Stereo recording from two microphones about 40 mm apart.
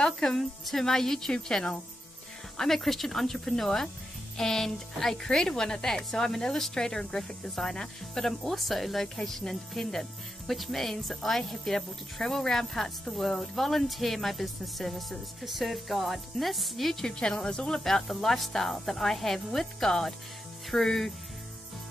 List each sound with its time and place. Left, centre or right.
0.0 s speech: centre
8.2 s speech: centre
17.0 s speech: centre
17.8 s speech: centre